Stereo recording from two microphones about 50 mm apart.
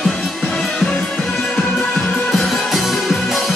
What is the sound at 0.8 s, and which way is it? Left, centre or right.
Music, centre.